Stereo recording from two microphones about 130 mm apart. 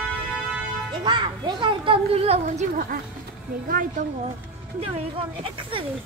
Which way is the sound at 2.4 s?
85° right.